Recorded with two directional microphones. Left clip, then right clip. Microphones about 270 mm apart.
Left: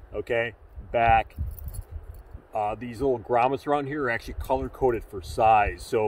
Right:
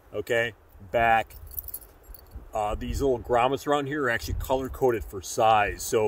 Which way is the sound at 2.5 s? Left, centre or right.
Centre.